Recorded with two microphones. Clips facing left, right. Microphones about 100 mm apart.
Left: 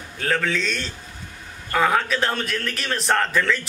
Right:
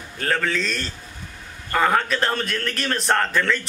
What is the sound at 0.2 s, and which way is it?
A man's voice, centre (ahead or behind).